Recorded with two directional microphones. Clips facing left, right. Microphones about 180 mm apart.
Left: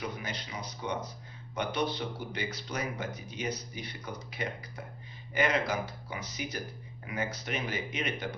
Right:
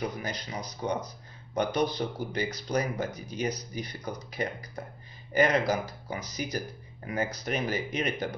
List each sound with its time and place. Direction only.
0.0 s speech: 40° right (ahead or behind)